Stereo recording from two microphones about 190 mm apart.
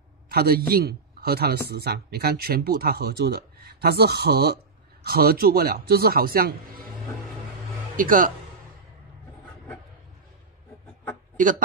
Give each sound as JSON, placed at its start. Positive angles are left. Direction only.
{"t": 0.3, "sound": "a man's voice", "side_deg": -55}
{"t": 7.9, "sound": "speech", "side_deg": -45}